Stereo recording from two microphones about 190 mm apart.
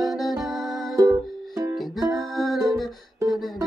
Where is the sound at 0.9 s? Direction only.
15° right (ahead or behind).